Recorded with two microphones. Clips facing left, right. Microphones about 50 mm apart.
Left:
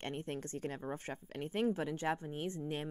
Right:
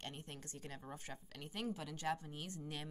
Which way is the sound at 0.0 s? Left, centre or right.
Left.